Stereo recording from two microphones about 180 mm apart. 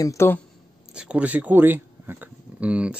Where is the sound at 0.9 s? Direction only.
5° right (ahead or behind).